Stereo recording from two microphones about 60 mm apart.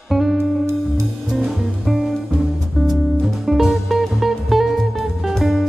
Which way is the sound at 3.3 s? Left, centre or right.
Centre.